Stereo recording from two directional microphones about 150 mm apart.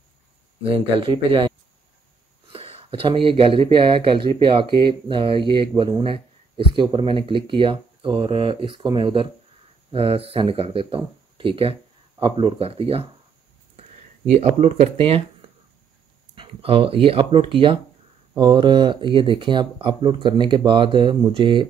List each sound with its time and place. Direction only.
0.7 s speech: 35° right (ahead or behind)
2.5 s speech: 40° right (ahead or behind)
14.4 s speech: 45° right (ahead or behind)
16.3 s speech: 40° right (ahead or behind)